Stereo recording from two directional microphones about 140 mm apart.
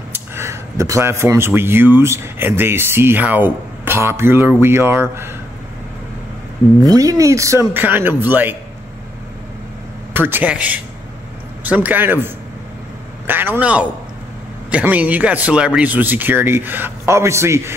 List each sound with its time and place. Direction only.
0.1 s speech: 20° right (ahead or behind)
6.8 s speech: 25° right (ahead or behind)
10.1 s speech: 15° right (ahead or behind)
13.3 s speech: 15° right (ahead or behind)